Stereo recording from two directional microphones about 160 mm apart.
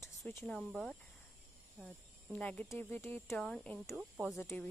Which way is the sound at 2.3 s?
10° left (ahead or behind).